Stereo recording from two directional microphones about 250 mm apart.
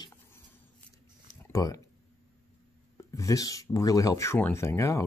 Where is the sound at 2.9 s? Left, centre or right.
Centre.